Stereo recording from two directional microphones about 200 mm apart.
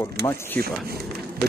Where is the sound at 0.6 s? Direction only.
50° right (ahead or behind).